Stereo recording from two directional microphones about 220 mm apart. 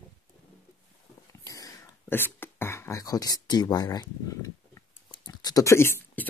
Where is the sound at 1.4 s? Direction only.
15° left (ahead or behind).